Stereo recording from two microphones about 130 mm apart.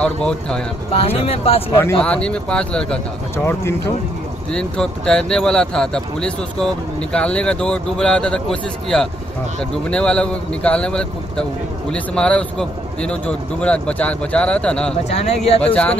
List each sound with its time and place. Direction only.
0.0 s a man's voice: 5° left (ahead or behind)
0.9 s speech: 50° left (ahead or behind)
2.0 s a man's voice: 10° left (ahead or behind)
3.4 s speech: 20° left (ahead or behind)
4.5 s a man's voice: 5° left (ahead or behind)
15.0 s speech: 55° left (ahead or behind)
15.6 s a man's voice: 10° left (ahead or behind)